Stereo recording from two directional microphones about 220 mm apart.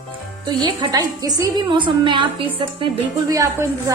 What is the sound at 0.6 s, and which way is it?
A woman's voice, 20° right (ahead or behind).